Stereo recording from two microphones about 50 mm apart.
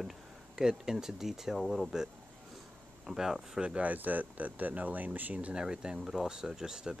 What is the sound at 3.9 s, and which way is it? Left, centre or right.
Speech, right.